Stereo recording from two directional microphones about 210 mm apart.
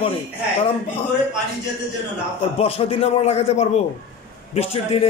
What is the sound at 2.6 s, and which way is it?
A man's voice, 30° left (ahead or behind).